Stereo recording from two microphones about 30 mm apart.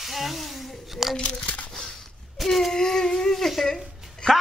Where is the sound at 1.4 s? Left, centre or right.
Left.